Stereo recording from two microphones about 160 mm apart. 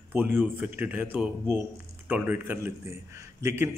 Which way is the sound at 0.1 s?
15° right (ahead or behind).